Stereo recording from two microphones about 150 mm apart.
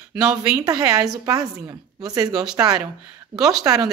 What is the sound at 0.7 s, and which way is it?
A woman's voice, 25° right (ahead or behind).